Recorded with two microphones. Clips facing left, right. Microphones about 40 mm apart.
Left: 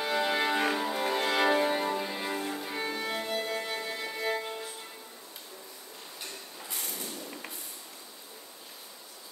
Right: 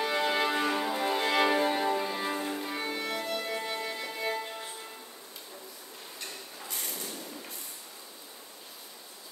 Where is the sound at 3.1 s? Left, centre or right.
Left.